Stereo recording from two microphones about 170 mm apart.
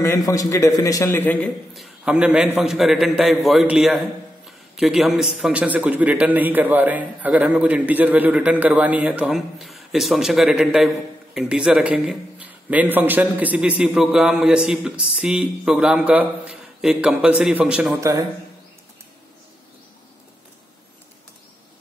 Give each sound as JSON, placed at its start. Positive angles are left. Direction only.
{"t": 0.0, "sound": "a man's voice", "side_deg": 15}
{"t": 2.0, "sound": "a man's voice", "side_deg": -5}